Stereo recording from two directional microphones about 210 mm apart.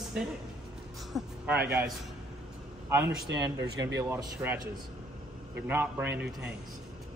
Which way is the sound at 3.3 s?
55° right (ahead or behind).